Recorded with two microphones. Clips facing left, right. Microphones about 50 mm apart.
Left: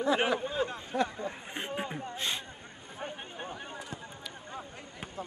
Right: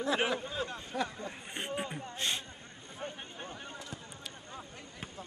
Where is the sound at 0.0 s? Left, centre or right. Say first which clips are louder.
Left 4 dB; centre.